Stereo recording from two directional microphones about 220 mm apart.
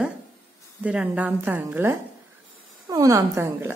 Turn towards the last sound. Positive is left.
turn(degrees=-10)  # may be behind; listen again after turning